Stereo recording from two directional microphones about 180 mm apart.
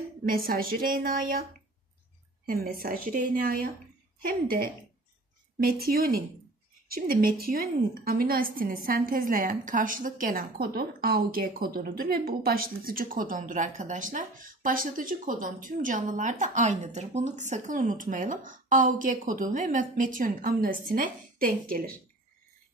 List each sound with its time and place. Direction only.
0.2 s a woman's voice: 55° right (ahead or behind)
2.4 s a woman's voice: 55° right (ahead or behind)